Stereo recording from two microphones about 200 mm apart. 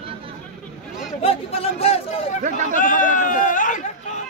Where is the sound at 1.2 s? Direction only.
30° left (ahead or behind).